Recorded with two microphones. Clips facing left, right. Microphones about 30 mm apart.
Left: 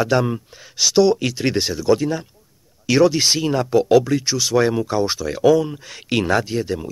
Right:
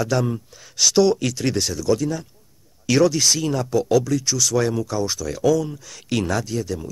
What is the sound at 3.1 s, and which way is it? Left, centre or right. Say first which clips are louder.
Speech: left 2 dB; left.